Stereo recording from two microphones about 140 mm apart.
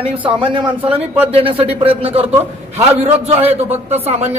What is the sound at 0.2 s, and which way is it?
A man's voice, 35° right (ahead or behind).